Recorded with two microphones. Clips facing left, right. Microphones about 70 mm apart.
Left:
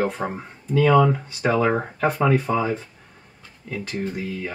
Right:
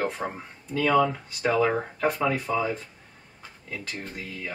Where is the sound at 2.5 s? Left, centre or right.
Left.